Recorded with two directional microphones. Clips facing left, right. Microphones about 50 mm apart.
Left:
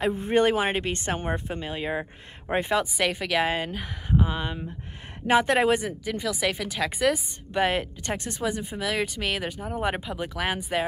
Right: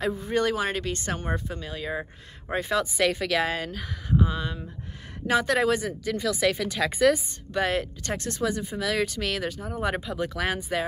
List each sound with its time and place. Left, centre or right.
0.0 s speech: left
5.9 s speech: centre
7.5 s speech: centre